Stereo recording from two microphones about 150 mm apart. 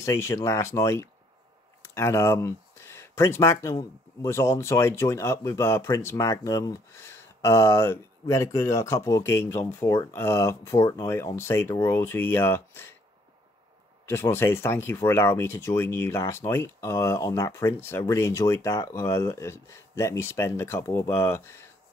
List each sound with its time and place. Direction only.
0.0 s speech: 20° left (ahead or behind)
14.0 s speech: 15° left (ahead or behind)